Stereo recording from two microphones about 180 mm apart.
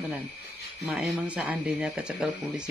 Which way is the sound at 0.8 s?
5° right (ahead or behind).